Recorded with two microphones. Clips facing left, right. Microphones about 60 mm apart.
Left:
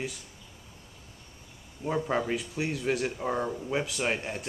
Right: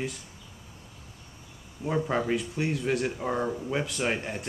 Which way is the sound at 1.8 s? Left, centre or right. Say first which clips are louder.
Right 1 dB; centre.